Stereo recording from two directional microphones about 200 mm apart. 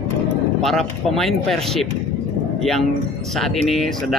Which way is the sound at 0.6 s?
Centre (ahead or behind).